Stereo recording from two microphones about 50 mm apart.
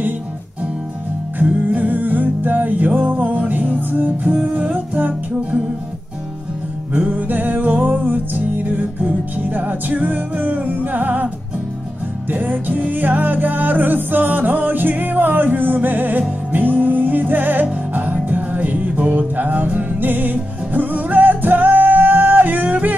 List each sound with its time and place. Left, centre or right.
1.4 s music: right
6.9 s music: right
12.3 s music: right